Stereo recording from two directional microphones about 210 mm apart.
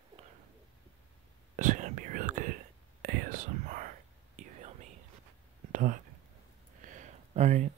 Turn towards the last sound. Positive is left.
turn(degrees=-30)  # may be behind; listen again after turning